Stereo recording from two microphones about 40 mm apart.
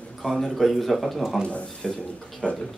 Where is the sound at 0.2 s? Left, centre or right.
Left.